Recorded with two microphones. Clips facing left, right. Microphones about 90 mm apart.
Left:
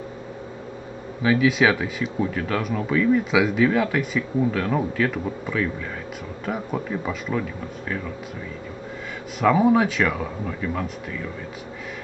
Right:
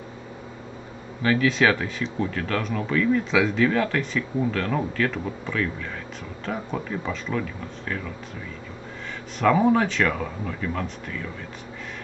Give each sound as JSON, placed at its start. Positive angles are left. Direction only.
{"t": 1.2, "sound": "speech", "side_deg": 5}
{"t": 9.4, "sound": "speech", "side_deg": 5}